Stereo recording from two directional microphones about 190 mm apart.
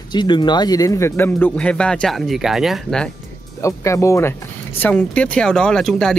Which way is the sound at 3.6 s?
15° left (ahead or behind).